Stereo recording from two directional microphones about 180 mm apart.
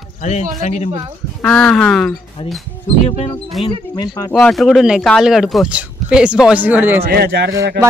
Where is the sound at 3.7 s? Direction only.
25° left (ahead or behind).